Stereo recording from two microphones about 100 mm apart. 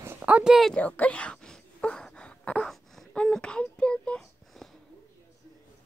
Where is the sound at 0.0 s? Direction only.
20° right (ahead or behind).